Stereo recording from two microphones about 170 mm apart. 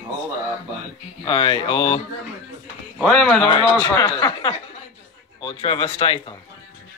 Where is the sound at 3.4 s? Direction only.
25° left (ahead or behind).